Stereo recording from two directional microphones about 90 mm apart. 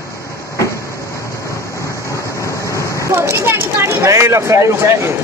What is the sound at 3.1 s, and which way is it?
Speech, 30° right (ahead or behind).